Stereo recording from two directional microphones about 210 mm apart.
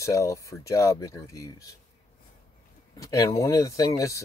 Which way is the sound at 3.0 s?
15° left (ahead or behind).